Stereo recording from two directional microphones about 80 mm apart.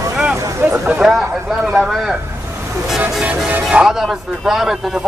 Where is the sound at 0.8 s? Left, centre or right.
Centre.